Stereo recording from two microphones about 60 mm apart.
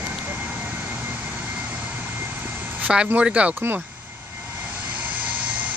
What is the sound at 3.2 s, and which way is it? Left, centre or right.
Speech, right.